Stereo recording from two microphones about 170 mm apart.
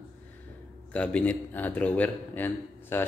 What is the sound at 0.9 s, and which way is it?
A man's voice, 10° left (ahead or behind).